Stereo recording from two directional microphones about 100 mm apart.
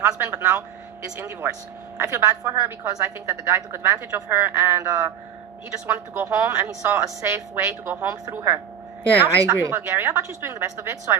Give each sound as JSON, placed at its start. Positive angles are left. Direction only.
{"t": 0.0, "sound": "a woman's voice", "side_deg": -25}
{"t": 2.0, "sound": "a woman's voice", "side_deg": -30}